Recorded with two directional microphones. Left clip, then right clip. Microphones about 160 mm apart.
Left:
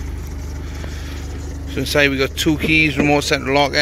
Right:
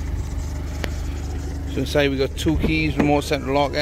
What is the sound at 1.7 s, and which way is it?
Speech, 5° right (ahead or behind).